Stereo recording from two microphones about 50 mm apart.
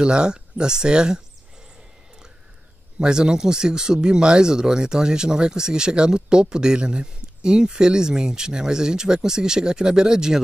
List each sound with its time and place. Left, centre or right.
0.0 s speech: centre
3.0 s speech: centre